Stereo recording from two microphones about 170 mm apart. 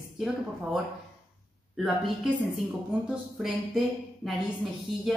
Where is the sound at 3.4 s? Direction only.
Centre (ahead or behind).